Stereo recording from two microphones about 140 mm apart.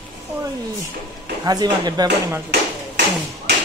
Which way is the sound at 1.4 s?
30° right (ahead or behind).